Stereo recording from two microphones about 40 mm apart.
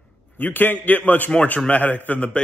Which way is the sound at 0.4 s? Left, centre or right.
Left.